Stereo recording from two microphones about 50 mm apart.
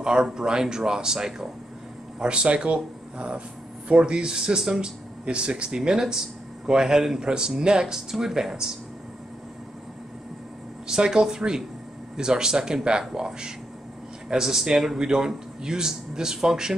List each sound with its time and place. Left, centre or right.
0.0 s speech: centre
10.9 s speech: centre